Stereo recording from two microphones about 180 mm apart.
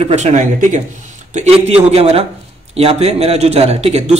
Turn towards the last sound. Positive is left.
turn(degrees=-35)  # may be behind; listen again after turning